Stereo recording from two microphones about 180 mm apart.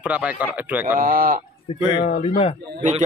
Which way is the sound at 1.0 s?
50° right (ahead or behind).